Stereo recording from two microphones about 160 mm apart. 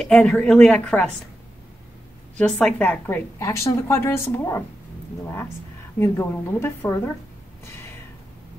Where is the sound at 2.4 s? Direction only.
10° left (ahead or behind).